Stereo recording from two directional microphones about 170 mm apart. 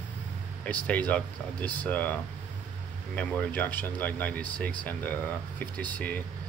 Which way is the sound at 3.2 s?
10° left (ahead or behind).